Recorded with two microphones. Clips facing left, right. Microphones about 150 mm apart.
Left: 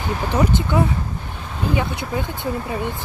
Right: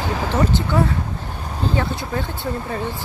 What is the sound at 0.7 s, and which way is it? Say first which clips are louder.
Speech: even; 15° left (ahead or behind).